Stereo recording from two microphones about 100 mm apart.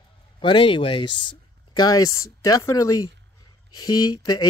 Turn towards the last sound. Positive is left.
turn(degrees=40)  # may be behind; listen again after turning